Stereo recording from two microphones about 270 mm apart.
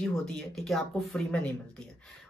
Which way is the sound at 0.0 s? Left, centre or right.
Centre.